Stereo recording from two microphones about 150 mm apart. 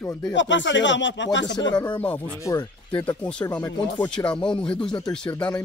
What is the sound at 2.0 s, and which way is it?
Speech, 10° left (ahead or behind).